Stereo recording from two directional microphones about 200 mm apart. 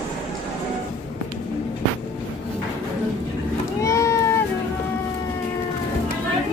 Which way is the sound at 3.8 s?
15° left (ahead or behind).